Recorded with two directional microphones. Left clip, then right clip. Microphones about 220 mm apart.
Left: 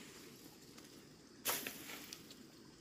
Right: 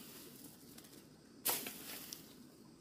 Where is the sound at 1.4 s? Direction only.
35° right (ahead or behind).